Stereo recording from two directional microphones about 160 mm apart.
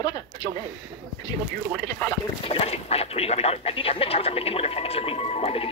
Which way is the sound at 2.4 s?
40° left (ahead or behind).